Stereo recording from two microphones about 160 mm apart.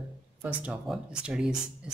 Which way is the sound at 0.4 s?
10° right (ahead or behind).